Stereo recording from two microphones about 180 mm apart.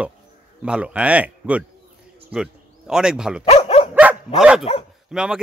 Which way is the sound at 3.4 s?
35° left (ahead or behind).